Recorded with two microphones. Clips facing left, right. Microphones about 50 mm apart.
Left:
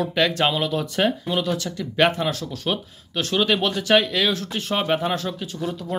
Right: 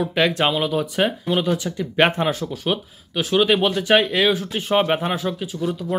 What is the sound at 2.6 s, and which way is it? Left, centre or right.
Speech, centre.